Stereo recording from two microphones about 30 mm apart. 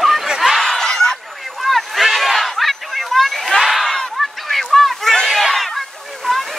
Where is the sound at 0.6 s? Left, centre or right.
Centre.